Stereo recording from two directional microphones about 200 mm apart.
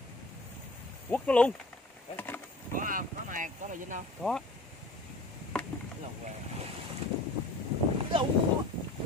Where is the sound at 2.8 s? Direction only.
40° right (ahead or behind).